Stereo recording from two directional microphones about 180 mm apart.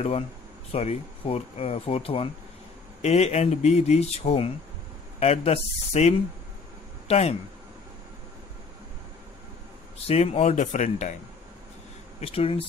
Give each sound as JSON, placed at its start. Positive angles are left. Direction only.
{"t": 0.7, "sound": "speech", "side_deg": 35}
{"t": 10.0, "sound": "speech", "side_deg": 35}
{"t": 12.2, "sound": "speech", "side_deg": 30}